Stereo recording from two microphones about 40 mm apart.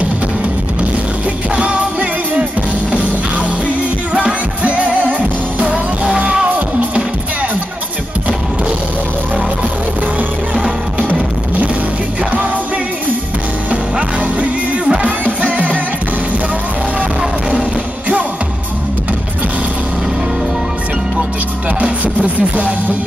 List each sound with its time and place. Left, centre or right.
1.6 s music: right
4.1 s music: right
13.7 s music: right
17.5 s music: right
21.7 s music: right